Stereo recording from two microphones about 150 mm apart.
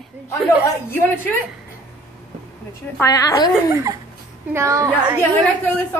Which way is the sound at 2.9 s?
20° left (ahead or behind).